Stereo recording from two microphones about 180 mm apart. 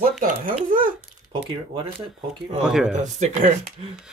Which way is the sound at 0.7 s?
45° right (ahead or behind).